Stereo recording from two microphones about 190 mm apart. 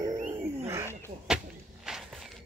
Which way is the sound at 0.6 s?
15° right (ahead or behind).